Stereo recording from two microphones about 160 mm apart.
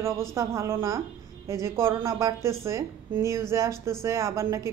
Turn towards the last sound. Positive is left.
turn(degrees=-20)  # may be behind; listen again after turning